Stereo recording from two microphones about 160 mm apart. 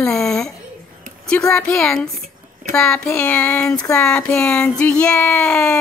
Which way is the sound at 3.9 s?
5° left (ahead or behind).